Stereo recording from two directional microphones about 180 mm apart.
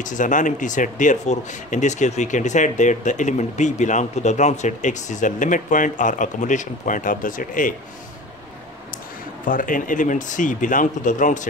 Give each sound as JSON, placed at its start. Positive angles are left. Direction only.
{"t": 0.0, "sound": "speech", "side_deg": 45}
{"t": 9.5, "sound": "speech", "side_deg": 50}